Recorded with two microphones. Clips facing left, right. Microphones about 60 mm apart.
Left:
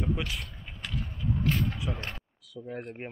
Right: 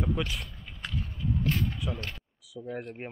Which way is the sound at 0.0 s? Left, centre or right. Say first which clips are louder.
Right 1 dB; centre.